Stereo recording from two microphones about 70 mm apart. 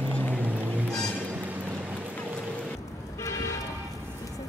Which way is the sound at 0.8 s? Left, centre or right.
Centre.